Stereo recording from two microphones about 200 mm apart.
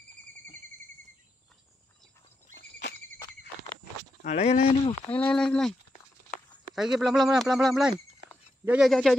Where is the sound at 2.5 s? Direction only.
40° right (ahead or behind).